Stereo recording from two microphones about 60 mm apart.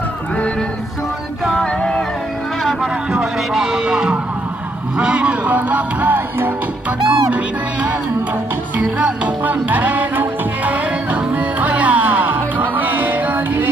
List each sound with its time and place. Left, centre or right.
1.5 s music: centre
2.8 s speech: centre
4.9 s music: centre
7.1 s speech: centre
8.7 s music: right